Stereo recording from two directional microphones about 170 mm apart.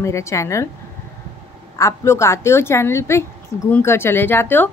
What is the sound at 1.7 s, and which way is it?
Speech, 15° left (ahead or behind).